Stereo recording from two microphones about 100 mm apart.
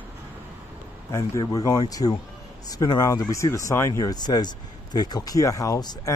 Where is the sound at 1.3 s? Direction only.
40° left (ahead or behind).